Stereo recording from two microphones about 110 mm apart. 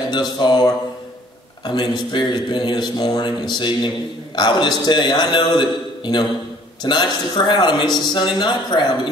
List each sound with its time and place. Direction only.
0.1 s a man's voice: 40° left (ahead or behind)
1.7 s a man's voice: 40° left (ahead or behind)